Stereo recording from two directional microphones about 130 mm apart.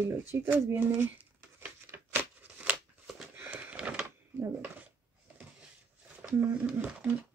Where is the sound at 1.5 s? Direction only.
15° right (ahead or behind).